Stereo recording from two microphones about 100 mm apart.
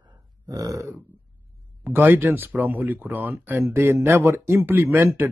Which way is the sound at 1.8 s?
20° right (ahead or behind).